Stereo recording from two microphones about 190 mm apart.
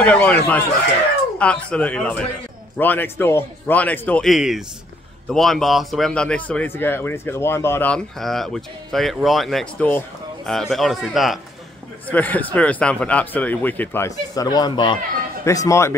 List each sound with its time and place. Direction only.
0.0 s speech: 5° left (ahead or behind)